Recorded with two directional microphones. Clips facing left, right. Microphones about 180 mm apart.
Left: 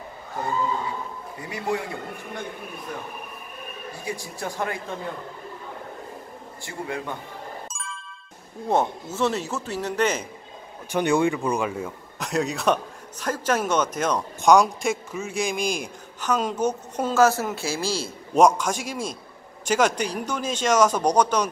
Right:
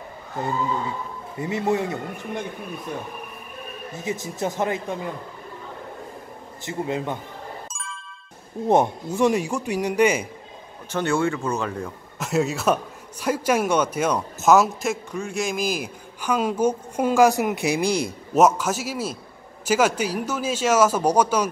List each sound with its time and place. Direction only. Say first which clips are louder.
1.4 s speech: right 5 dB; 25° right (ahead or behind)
3.9 s speech: right 5 dB; 20° right (ahead or behind)
6.6 s speech: right 5 dB; 20° right (ahead or behind)
7.6 s ding: even; centre (ahead or behind)
8.6 s speech: right 4 dB; 15° right (ahead or behind)
10.9 s speech: left 2 dB; 15° left (ahead or behind); by 18.1 s 15° right (ahead or behind)
18.3 s a man's voice: even; 5° right (ahead or behind)